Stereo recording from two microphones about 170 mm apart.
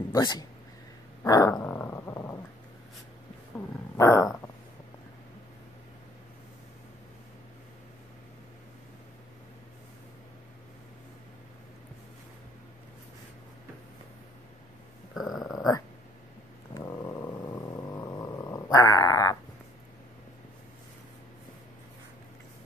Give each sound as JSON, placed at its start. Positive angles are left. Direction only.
{"t": 0.1, "sound": "speech", "side_deg": 25}
{"t": 1.2, "sound": "dog", "side_deg": 20}
{"t": 3.9, "sound": "dog", "side_deg": 15}
{"t": 15.1, "sound": "dog", "side_deg": 0}
{"t": 16.7, "sound": "purr", "side_deg": 20}